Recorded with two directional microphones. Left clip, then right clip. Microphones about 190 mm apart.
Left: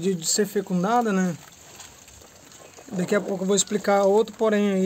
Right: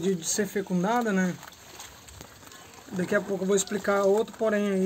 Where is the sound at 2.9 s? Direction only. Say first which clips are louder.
Left 3 dB; 40° left (ahead or behind).